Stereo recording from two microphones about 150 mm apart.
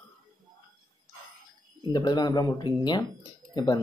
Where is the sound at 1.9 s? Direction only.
30° left (ahead or behind).